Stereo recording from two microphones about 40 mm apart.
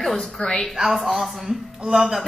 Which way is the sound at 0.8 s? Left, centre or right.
Centre.